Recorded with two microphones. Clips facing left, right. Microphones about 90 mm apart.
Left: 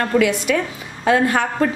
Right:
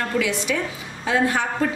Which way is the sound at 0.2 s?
55° left (ahead or behind).